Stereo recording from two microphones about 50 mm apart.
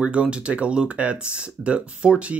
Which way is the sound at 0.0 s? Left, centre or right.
Right.